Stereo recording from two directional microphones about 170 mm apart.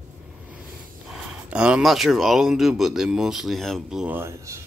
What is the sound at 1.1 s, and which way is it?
Speech, 5° right (ahead or behind).